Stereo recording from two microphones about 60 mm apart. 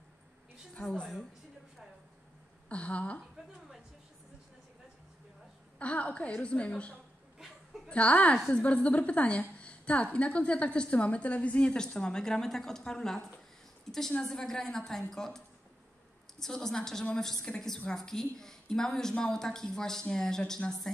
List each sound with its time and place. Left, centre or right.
0.7 s speech: centre
2.7 s a woman's voice: centre
5.8 s a woman's voice: left
7.3 s a sound: centre
7.9 s a woman's voice: left
13.9 s a sound: centre
14.2 s speech: centre